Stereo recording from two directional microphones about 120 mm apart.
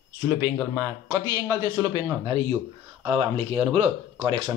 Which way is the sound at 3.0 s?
50° right (ahead or behind).